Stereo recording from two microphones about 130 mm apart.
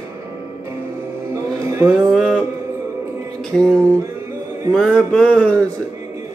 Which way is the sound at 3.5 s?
5° left (ahead or behind).